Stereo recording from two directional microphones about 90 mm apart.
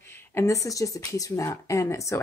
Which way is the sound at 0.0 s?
25° left (ahead or behind).